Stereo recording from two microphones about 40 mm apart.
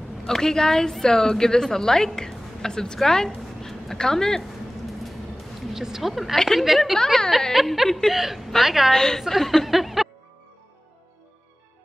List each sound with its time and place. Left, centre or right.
0.3 s a woman's voice: centre
3.6 s a sound: centre
5.7 s a woman's voice: centre
6.3 s a woman's voice: centre
8.9 s a woman's voice: centre
9.7 s speech: centre